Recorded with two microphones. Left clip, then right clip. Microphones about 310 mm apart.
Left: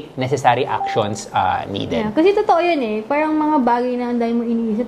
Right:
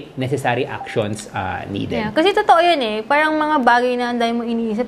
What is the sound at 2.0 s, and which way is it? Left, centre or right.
A woman's voice, right.